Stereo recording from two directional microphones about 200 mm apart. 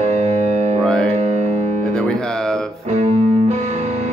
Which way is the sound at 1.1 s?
35° right (ahead or behind).